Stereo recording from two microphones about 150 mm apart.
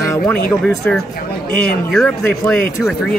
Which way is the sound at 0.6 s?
Centre (ahead or behind).